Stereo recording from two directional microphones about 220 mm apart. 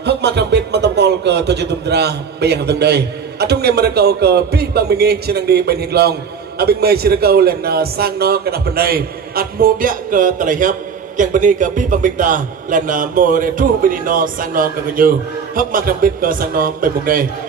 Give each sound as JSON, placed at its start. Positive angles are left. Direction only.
{"t": 0.0, "sound": "a man's voice", "side_deg": -50}